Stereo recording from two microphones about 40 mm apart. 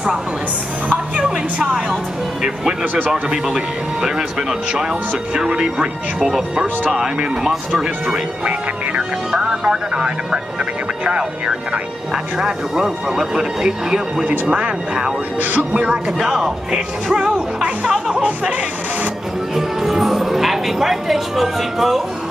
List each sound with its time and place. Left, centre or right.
1.2 s speech: centre
2.8 s speech: right
3.1 s speech: centre
10.6 s speech: right
14.5 s speech: right
16.2 s speech: centre
19.5 s speech: centre